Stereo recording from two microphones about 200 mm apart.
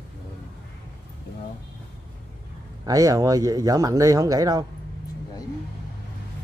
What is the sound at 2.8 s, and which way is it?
Speech, 20° right (ahead or behind).